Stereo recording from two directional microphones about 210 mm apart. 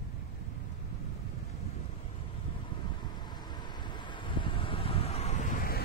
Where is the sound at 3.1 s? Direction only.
20° left (ahead or behind); by 5.7 s 40° left (ahead or behind).